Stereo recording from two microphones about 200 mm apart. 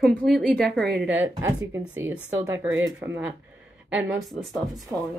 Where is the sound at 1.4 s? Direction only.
10° right (ahead or behind).